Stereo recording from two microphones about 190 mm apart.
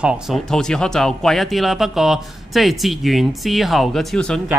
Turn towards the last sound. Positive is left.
turn(degrees=5)  # may be behind; listen again after turning